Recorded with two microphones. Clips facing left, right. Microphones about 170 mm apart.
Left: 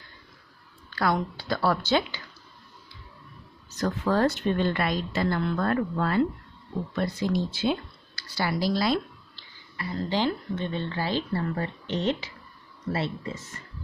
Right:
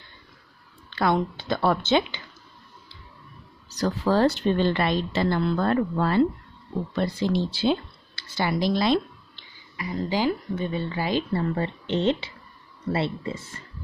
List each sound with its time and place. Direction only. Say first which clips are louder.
0.8 s a woman's voice: right 3 dB; 25° right (ahead or behind)
3.7 s a woman's voice: right 3 dB; 35° right (ahead or behind); by 11.2 s 15° right (ahead or behind)
11.3 s a woman's voice: right 3 dB; 25° right (ahead or behind)